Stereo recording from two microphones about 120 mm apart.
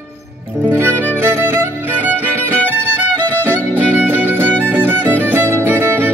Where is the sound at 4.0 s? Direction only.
15° right (ahead or behind).